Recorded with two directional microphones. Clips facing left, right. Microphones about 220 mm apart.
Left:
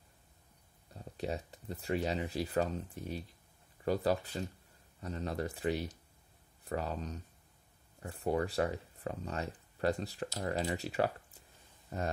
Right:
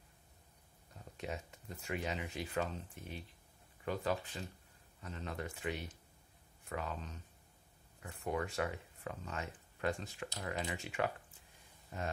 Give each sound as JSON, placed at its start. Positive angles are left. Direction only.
{"t": 0.9, "sound": "speech", "side_deg": 35}